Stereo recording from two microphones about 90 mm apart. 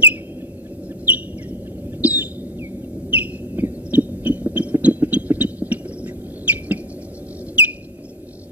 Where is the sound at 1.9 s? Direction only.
20° right (ahead or behind).